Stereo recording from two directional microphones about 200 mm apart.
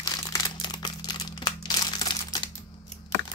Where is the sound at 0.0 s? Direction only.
20° left (ahead or behind).